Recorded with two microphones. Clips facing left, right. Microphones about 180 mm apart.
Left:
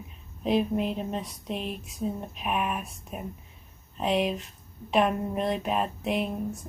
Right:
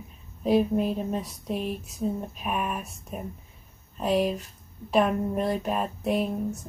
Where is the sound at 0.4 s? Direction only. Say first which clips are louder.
Right 3 dB; 5° right (ahead or behind).